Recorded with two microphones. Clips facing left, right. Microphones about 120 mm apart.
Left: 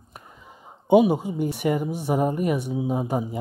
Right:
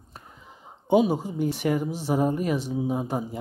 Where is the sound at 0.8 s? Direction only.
15° left (ahead or behind).